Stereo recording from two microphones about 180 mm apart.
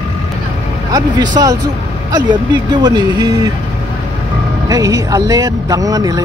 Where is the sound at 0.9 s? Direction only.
20° right (ahead or behind).